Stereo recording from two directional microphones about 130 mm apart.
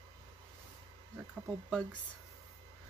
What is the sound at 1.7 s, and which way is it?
Speech, 10° left (ahead or behind).